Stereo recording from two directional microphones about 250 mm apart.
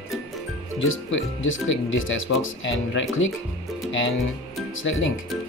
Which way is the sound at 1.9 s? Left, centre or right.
Left.